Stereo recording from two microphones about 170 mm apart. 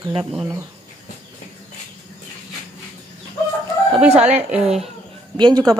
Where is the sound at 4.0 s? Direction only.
5° right (ahead or behind).